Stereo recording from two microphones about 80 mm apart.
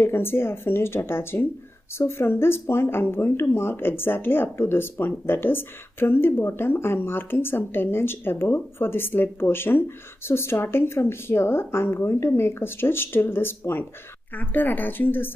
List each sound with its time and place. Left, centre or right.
0.0 s speech: left